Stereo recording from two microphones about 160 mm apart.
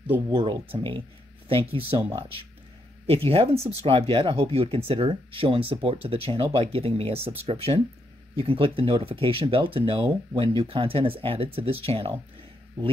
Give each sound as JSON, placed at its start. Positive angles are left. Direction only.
{"t": 0.3, "sound": "speech", "side_deg": -30}
{"t": 3.1, "sound": "speech", "side_deg": -35}